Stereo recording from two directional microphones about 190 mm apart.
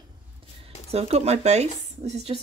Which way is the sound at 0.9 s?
35° right (ahead or behind).